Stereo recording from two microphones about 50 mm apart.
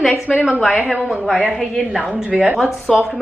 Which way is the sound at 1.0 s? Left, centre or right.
Centre.